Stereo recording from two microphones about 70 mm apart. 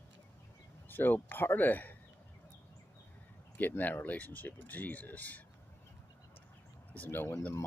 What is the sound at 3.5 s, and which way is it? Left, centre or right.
Speech, left.